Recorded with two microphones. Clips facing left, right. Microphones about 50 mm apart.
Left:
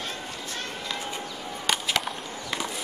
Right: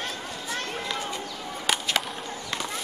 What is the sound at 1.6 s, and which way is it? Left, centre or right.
Whip, centre.